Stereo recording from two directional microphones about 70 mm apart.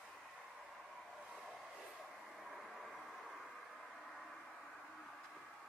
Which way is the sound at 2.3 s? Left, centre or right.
Centre.